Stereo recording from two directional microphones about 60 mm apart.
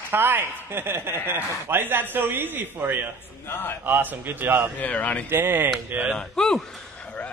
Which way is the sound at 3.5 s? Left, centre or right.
Left.